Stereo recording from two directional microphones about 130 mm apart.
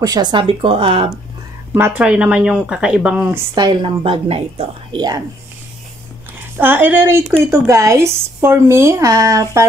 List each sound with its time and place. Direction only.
0.0 s speech: 30° right (ahead or behind)
1.7 s speech: 15° right (ahead or behind)
3.5 s speech: 35° right (ahead or behind)
4.0 s speech: 45° right (ahead or behind)
6.6 s speech: 15° right (ahead or behind)